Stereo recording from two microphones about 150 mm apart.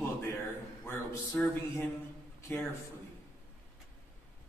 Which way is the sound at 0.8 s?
15° left (ahead or behind).